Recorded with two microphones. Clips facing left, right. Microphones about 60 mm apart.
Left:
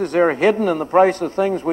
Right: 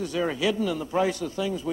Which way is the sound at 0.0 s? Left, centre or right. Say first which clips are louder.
Left 10 dB; left.